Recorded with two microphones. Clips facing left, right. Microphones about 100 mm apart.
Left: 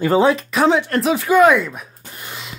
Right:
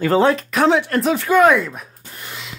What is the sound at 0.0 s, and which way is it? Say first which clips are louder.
Speech: even; 10° left (ahead or behind).